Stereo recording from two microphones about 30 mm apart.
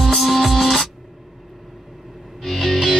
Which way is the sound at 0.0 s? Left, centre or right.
Centre.